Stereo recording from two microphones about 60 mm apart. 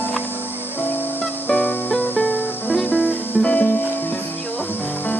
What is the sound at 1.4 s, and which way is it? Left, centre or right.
Music, left.